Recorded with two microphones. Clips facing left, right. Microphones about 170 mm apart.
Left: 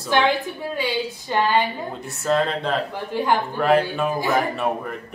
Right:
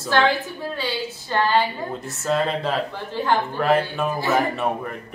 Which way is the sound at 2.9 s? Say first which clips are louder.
Left 1 dB; 15° left (ahead or behind).